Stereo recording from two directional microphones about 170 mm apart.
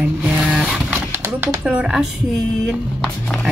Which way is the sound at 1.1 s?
10° right (ahead or behind).